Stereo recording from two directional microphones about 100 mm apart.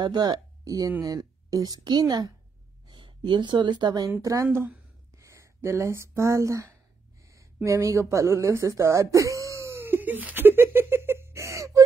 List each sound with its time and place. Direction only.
0.0 s a woman's voice: 45° right (ahead or behind)
2.9 s speech: 55° right (ahead or behind)
4.2 s speech: 30° right (ahead or behind)
7.6 s a sound: 30° right (ahead or behind)